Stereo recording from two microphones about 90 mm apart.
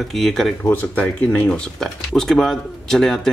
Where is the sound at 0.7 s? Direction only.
20° left (ahead or behind).